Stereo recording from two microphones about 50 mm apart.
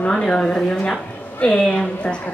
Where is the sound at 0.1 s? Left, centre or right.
Centre.